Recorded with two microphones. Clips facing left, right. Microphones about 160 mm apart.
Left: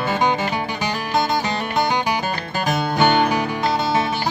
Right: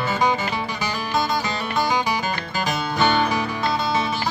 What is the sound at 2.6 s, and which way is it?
Music, 55° left (ahead or behind).